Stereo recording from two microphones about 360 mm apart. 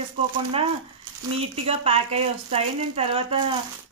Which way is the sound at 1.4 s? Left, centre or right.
Centre.